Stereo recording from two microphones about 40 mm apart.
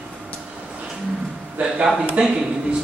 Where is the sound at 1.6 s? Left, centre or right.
Right.